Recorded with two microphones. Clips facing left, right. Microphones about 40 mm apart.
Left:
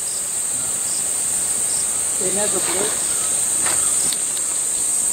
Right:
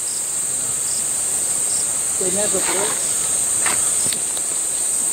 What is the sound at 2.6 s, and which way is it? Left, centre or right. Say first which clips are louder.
Speech: right 1 dB; centre.